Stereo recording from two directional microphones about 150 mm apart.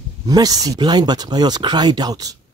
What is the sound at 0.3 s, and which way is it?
Speech, 25° right (ahead or behind).